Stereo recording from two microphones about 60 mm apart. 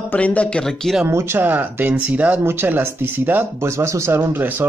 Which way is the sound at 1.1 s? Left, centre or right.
Right.